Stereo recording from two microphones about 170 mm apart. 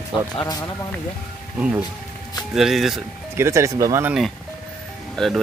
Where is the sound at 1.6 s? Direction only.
5° right (ahead or behind).